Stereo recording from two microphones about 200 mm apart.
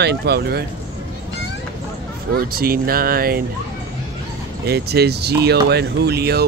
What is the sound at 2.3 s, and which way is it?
Speech, 50° right (ahead or behind).